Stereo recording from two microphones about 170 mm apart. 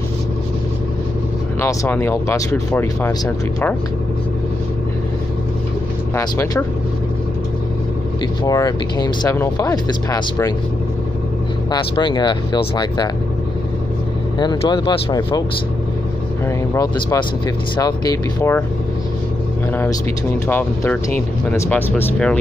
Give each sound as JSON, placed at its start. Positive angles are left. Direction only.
{"t": 1.6, "sound": "speech", "side_deg": 15}
{"t": 6.1, "sound": "speech", "side_deg": 15}
{"t": 8.5, "sound": "speech", "side_deg": 20}
{"t": 11.7, "sound": "speech", "side_deg": 25}
{"t": 14.4, "sound": "speech", "side_deg": 25}
{"t": 16.4, "sound": "speech", "side_deg": 15}
{"t": 20.4, "sound": "speech", "side_deg": 10}